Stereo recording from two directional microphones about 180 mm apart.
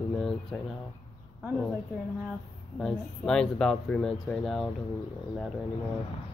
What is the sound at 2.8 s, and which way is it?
Speech, 5° left (ahead or behind).